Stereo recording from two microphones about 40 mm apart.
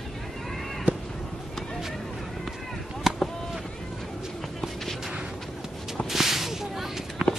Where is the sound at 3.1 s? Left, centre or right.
Centre.